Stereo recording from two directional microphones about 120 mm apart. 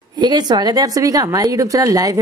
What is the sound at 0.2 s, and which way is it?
Speech, 35° right (ahead or behind).